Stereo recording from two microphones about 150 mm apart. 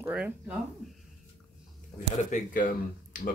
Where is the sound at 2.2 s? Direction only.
60° left (ahead or behind).